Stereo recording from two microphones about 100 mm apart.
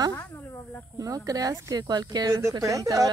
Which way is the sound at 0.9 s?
35° right (ahead or behind).